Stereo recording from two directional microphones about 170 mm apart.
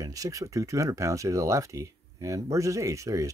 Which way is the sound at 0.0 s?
20° right (ahead or behind).